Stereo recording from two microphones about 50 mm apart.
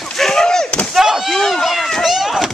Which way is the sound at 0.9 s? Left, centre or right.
Centre.